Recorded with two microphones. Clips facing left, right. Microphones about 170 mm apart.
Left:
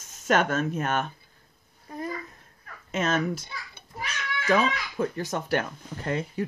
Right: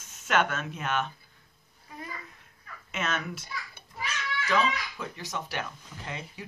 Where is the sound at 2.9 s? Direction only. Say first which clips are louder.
Left 7 dB; 40° left (ahead or behind).